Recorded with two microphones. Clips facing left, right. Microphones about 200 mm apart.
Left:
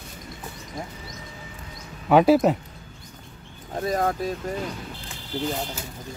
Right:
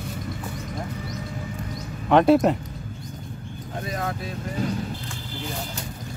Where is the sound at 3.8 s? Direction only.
40° left (ahead or behind).